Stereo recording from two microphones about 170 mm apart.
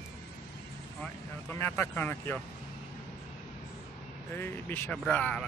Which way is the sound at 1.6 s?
15° left (ahead or behind).